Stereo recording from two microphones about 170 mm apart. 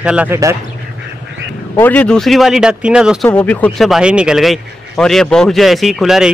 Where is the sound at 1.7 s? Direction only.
10° left (ahead or behind).